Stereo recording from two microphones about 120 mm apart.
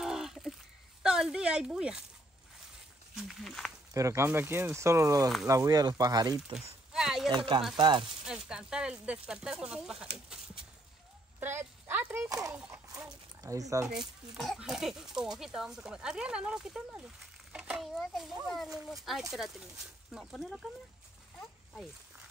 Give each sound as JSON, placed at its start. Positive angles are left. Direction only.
{"t": 0.0, "sound": "a sound", "side_deg": -5}
{"t": 1.0, "sound": "speech", "side_deg": -5}
{"t": 3.2, "sound": "speech", "side_deg": 0}
{"t": 3.9, "sound": "speech", "side_deg": -25}
{"t": 6.5, "sound": "a sound", "side_deg": -5}
{"t": 7.2, "sound": "speech", "side_deg": -40}
{"t": 8.5, "sound": "speech", "side_deg": -5}
{"t": 11.3, "sound": "speech", "side_deg": -15}
{"t": 12.3, "sound": "speech", "side_deg": -30}
{"t": 12.5, "sound": "speech", "side_deg": -10}
{"t": 12.8, "sound": "speech", "side_deg": -30}
{"t": 14.3, "sound": "a child's voice", "side_deg": 0}